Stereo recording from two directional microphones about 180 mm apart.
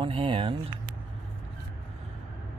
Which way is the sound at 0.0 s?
30° right (ahead or behind).